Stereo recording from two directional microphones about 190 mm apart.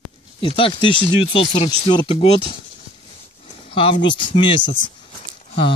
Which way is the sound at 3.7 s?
25° left (ahead or behind).